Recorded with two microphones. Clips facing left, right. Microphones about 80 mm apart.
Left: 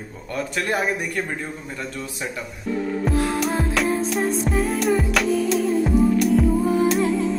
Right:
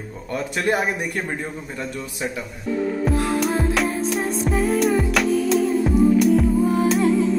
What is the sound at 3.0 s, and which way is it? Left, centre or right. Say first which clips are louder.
Music: even; centre.